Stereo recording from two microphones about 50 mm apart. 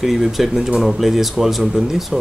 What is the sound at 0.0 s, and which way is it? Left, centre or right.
Speech, centre.